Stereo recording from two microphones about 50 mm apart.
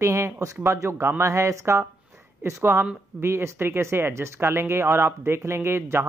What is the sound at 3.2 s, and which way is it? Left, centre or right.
Speech, right.